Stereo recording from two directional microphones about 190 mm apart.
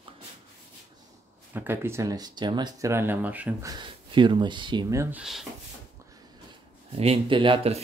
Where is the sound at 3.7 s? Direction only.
25° right (ahead or behind).